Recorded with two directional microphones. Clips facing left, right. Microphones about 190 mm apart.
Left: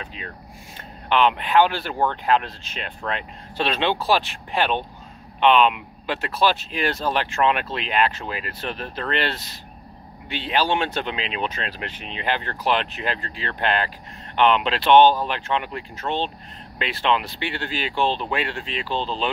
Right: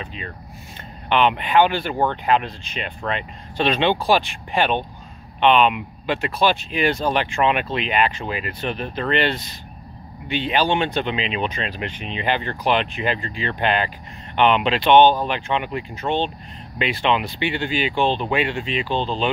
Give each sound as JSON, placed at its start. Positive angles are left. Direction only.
{"t": 0.0, "sound": "speech", "side_deg": 0}